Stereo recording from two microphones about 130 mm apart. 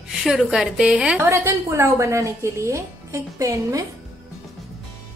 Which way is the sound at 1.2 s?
20° right (ahead or behind).